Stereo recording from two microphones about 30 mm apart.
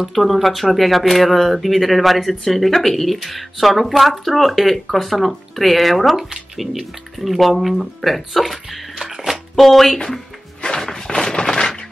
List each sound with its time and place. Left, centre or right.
0.1 s speech: centre
6.1 s speech: centre
9.0 s music: centre
9.6 s speech: centre
10.6 s a sound: left